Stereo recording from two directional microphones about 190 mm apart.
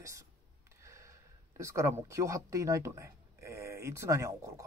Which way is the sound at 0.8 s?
15° right (ahead or behind).